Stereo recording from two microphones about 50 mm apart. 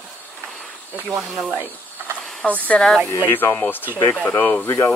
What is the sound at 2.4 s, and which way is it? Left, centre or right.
Speech, left.